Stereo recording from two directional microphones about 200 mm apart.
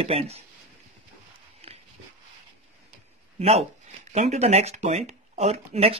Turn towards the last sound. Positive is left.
turn(degrees=-30)  # may be behind; listen again after turning